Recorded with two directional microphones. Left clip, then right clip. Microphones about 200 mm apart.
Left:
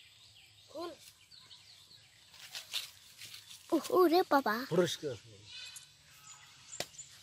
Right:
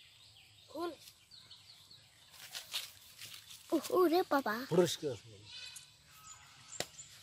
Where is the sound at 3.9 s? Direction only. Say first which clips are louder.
Left 3 dB; 35° left (ahead or behind).